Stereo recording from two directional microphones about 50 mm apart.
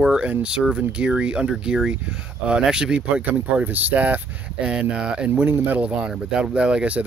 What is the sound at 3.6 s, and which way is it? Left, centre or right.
Speech, right.